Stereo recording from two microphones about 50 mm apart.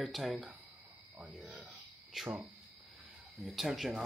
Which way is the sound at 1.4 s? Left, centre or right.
Right.